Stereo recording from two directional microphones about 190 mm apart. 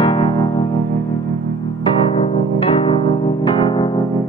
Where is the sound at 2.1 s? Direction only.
25° left (ahead or behind).